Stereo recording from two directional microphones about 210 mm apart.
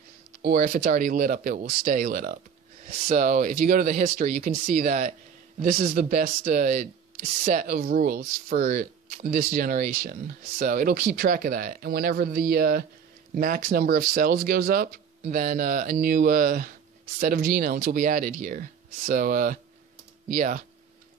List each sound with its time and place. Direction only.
0.4 s speech: 40° right (ahead or behind)